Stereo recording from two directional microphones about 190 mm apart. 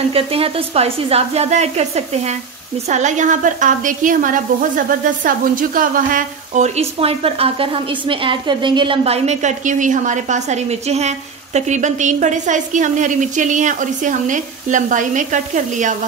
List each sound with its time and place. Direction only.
0.1 s a woman's voice: 30° right (ahead or behind)